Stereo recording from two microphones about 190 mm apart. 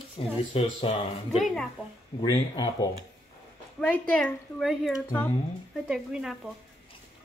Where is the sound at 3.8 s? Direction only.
5° left (ahead or behind).